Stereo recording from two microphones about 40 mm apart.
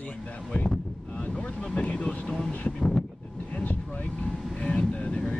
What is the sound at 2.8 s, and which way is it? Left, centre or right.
Wind noise, left.